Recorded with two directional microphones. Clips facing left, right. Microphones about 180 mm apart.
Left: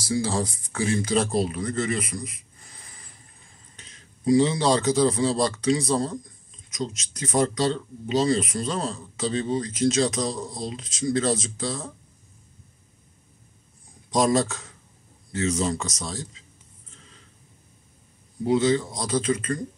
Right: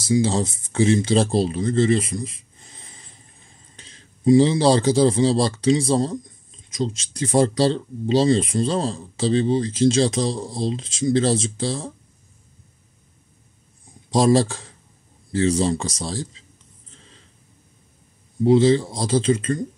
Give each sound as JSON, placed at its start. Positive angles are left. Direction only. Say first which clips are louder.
{"t": 0.0, "sound": "speech", "louder": "right 5 dB", "side_deg": -25}
{"t": 14.1, "sound": "speech", "louder": "right 4 dB", "side_deg": -30}
{"t": 18.4, "sound": "speech", "louder": "right 6 dB", "side_deg": -30}